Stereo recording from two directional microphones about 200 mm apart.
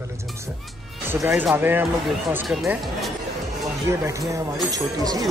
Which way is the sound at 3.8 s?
15° right (ahead or behind).